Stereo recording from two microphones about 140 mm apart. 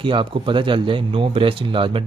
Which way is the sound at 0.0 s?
35° right (ahead or behind).